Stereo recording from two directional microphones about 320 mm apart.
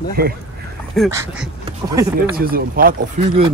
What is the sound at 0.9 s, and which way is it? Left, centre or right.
Speech, centre.